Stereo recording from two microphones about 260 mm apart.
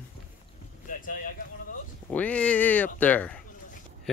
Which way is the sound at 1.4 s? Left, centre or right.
Left.